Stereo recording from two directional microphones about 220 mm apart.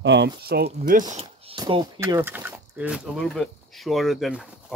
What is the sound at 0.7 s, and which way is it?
Speech, 35° right (ahead or behind).